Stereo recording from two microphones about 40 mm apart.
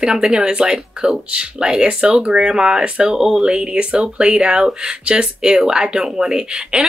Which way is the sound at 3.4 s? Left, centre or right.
Right.